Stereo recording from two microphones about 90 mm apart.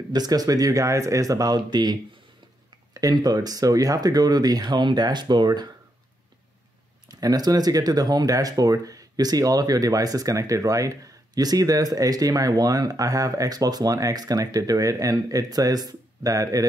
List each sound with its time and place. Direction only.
0.1 s speech: 45° right (ahead or behind)
7.1 s speech: 45° right (ahead or behind)